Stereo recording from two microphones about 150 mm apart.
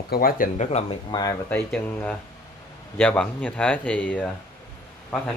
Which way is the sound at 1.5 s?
10° left (ahead or behind).